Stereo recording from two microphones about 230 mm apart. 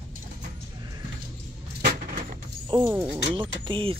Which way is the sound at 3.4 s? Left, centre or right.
Right.